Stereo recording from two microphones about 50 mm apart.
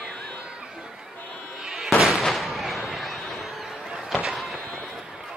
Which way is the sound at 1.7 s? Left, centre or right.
Centre.